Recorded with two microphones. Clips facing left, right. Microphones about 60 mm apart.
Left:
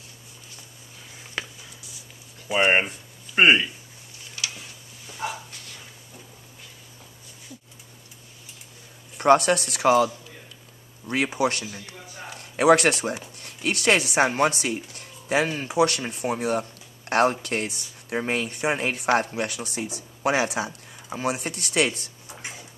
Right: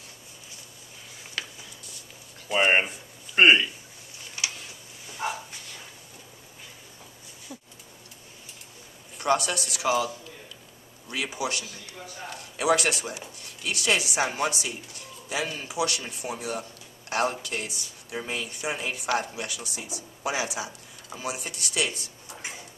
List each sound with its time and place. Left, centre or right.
1.4 s a sound: centre
2.4 s speech: centre
5.1 s dog: centre
9.2 s speech: left
11.1 s speech: left